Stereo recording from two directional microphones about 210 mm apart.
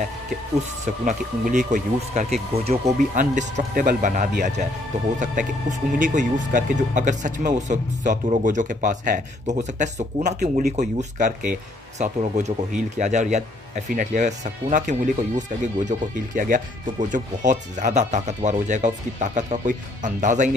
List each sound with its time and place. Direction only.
0.8 s speech: 35° right (ahead or behind)